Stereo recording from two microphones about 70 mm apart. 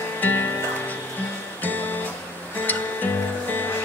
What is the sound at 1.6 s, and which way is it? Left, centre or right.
Music, left.